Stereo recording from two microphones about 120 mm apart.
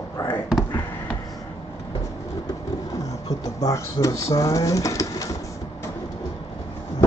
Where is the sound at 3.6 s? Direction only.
25° left (ahead or behind).